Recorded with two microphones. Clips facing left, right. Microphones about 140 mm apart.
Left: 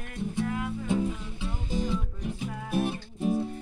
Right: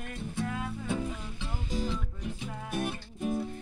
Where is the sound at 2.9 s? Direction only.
30° left (ahead or behind).